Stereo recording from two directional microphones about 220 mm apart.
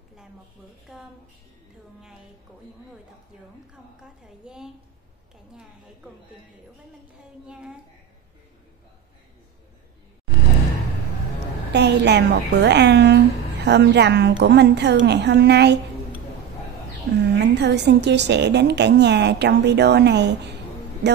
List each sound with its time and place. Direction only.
4.4 s a woman's voice: 5° right (ahead or behind)
7.4 s a woman's voice: 5° right (ahead or behind)
11.3 s a woman's voice: 50° right (ahead or behind)
17.1 s a woman's voice: 45° right (ahead or behind)